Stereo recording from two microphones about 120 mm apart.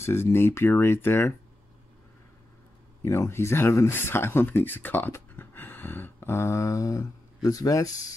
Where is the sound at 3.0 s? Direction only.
25° left (ahead or behind).